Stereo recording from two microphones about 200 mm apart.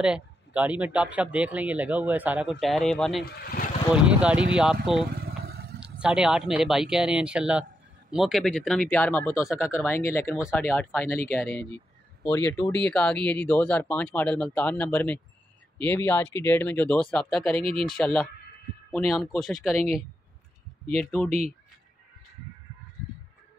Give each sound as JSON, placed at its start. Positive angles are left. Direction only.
{"t": 0.0, "sound": "speech", "side_deg": -5}
{"t": 3.3, "sound": "speech", "side_deg": 50}
{"t": 3.9, "sound": "speech", "side_deg": -5}
{"t": 5.1, "sound": "motorcycle", "side_deg": -55}
{"t": 5.8, "sound": "speech", "side_deg": -5}
{"t": 20.9, "sound": "speech", "side_deg": 5}
{"t": 21.3, "sound": "speech", "side_deg": -30}